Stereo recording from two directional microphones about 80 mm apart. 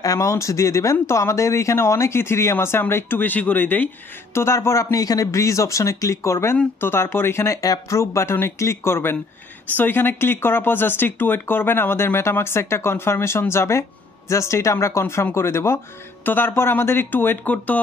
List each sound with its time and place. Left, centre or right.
0.0 s speech: left
4.3 s speech: left